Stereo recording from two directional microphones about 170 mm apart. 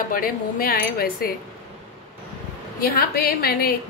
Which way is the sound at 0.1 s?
60° left (ahead or behind).